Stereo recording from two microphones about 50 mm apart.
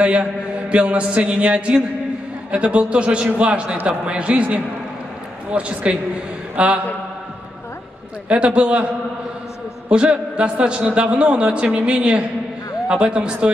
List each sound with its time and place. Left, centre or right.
0.0 s a man's voice: right
6.5 s mantra: right
8.3 s a man's voice: right